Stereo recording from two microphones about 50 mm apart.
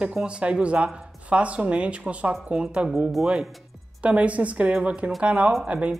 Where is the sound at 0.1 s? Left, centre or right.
Centre.